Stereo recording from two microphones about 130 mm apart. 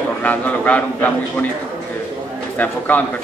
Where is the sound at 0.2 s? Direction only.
10° left (ahead or behind).